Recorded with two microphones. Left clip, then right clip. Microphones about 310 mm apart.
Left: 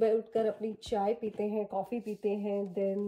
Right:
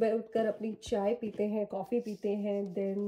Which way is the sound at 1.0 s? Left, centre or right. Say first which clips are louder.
Even; left.